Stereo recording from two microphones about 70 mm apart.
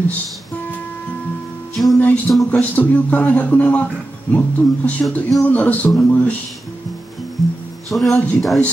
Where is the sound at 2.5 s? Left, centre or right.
Left.